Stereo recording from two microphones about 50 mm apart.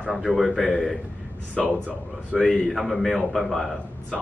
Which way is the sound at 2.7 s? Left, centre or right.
Centre.